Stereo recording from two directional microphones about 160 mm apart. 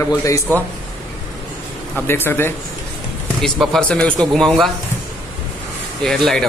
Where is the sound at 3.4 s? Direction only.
Centre (ahead or behind).